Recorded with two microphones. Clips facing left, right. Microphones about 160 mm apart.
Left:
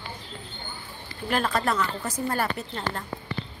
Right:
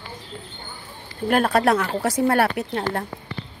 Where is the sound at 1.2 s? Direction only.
60° right (ahead or behind).